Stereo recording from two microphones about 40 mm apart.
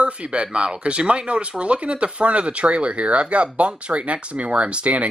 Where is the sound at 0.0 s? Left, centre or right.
Right.